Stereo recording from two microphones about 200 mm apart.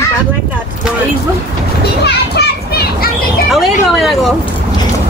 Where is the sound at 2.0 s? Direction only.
55° left (ahead or behind).